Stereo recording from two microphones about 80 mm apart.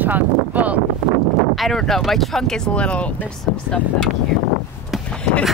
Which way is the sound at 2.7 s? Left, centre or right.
Centre.